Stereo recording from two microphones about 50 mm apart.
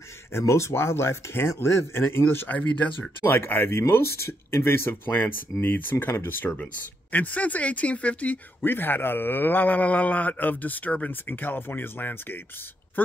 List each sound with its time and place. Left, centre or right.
0.3 s speech: left
2.5 s speech: left
3.3 s speech: left
8.6 s speech: left